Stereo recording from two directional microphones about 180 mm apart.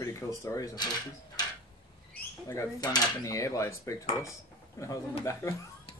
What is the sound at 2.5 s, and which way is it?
Cutlery, 20° left (ahead or behind).